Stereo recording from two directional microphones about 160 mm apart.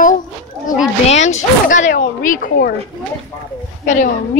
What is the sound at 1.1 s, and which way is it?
Speech, 45° left (ahead or behind).